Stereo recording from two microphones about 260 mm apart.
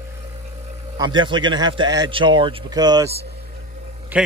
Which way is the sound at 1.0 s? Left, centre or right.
Centre.